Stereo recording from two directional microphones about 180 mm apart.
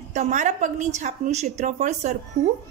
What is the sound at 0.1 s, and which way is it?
A woman's voice, 40° right (ahead or behind).